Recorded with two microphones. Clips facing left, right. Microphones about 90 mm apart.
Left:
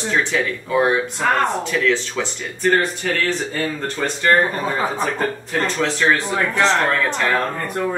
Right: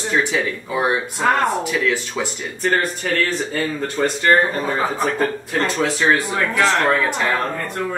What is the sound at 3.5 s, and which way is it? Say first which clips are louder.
Speech: right 2 dB; 5° right (ahead or behind).